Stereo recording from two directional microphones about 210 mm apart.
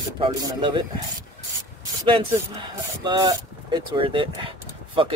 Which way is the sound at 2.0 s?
25° right (ahead or behind).